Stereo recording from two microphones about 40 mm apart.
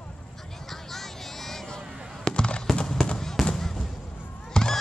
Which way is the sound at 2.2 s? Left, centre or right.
Left.